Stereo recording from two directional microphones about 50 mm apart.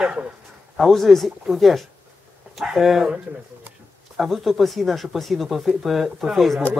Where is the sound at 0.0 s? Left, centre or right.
Right.